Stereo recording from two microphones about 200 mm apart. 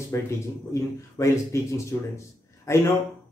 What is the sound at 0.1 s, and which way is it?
Speech, 15° left (ahead or behind).